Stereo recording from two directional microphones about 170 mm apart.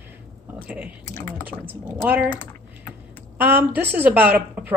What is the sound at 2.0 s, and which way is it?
Speech, 10° right (ahead or behind).